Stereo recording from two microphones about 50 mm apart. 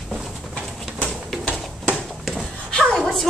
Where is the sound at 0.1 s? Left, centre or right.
Centre.